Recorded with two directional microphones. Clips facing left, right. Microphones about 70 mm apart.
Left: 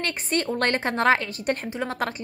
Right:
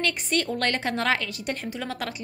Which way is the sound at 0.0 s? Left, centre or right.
Left.